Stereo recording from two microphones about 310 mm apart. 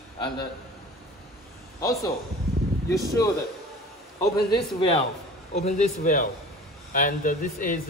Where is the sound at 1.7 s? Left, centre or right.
Centre.